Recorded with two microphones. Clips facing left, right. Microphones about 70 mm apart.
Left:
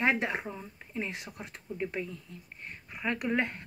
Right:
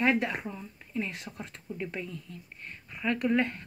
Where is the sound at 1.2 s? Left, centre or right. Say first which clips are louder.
Right 1 dB; centre.